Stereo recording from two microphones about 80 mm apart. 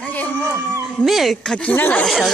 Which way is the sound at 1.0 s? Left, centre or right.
Centre.